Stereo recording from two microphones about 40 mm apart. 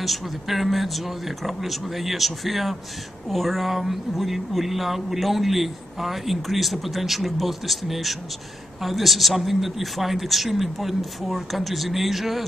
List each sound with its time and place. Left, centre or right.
0.0 s speech: centre